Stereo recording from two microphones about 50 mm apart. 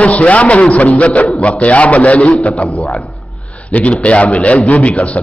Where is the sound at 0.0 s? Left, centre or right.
Left.